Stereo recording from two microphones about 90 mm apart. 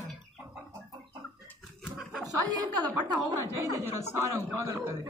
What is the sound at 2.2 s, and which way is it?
Speech, 40° right (ahead or behind).